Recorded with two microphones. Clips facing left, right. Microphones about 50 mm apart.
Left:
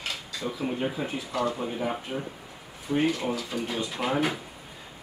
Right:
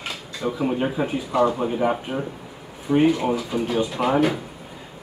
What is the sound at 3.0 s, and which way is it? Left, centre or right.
Speech, centre.